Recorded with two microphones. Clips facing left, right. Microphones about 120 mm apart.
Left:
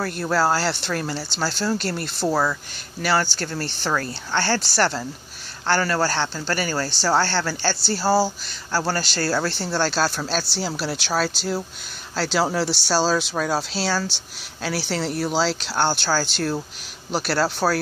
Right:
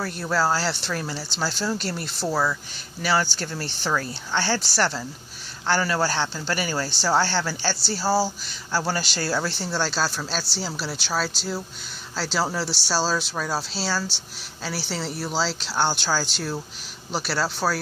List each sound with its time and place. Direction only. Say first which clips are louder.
0.6 s speech: left 3 dB; 5° right (ahead or behind)
2.2 s speech: left 3 dB; 15° left (ahead or behind)
3.0 s speech: left 2 dB; 5° right (ahead or behind)